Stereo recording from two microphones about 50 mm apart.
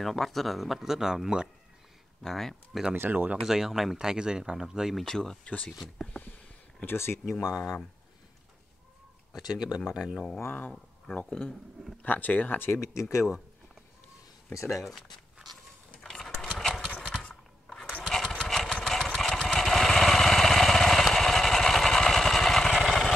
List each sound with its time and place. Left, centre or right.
0.0 s speech: centre
2.2 s speech: centre
3.0 s speech: right
3.3 s speech: centre
5.0 s speech: centre
6.9 s speech: left
9.3 s speech: centre
10.4 s speech: left
14.5 s speech: left
14.8 s speech: centre
16.0 s a sound: centre
18.0 s engine: centre
19.0 s vehicle: centre